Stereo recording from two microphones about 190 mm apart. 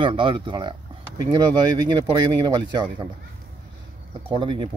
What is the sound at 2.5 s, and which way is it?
Speech, 20° right (ahead or behind).